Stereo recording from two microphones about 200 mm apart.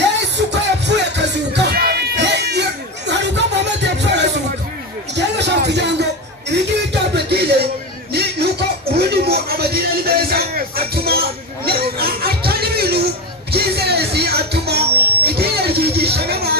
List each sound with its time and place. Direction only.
0.2 s music: 60° right (ahead or behind)